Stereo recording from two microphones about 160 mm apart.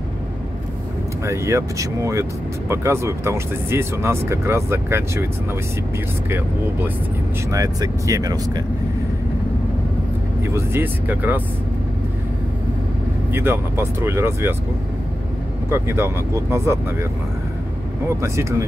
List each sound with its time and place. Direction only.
1.2 s speech: 20° right (ahead or behind)
7.5 s speech: 20° right (ahead or behind)
10.4 s speech: 15° right (ahead or behind)
13.3 s speech: 15° right (ahead or behind)
15.7 s speech: 15° right (ahead or behind)
18.0 s speech: 20° right (ahead or behind)